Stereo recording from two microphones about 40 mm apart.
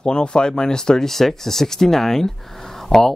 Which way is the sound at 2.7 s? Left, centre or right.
Centre.